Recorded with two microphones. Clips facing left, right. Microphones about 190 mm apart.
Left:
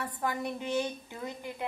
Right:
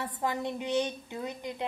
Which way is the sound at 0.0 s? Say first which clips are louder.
Right 1 dB; 20° right (ahead or behind).